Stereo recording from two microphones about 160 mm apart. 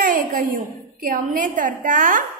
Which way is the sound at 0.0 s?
60° right (ahead or behind).